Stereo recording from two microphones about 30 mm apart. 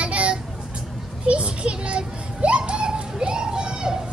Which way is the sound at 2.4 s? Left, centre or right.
Right.